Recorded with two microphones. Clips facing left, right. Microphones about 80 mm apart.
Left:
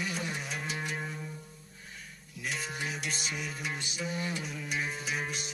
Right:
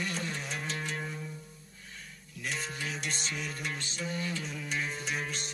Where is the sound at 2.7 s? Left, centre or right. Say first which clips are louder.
Left 1 dB; centre.